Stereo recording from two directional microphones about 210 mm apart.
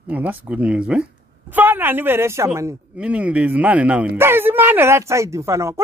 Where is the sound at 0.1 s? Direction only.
10° right (ahead or behind).